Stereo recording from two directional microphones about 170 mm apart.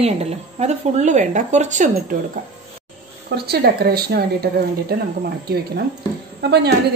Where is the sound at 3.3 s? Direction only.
70° right (ahead or behind).